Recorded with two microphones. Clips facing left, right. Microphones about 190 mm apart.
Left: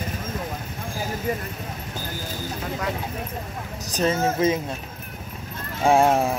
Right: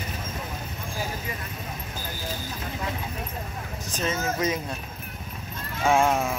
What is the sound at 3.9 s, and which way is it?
Speech, 35° left (ahead or behind).